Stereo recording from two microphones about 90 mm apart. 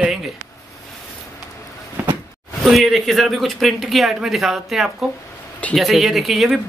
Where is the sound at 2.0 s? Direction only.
20° right (ahead or behind).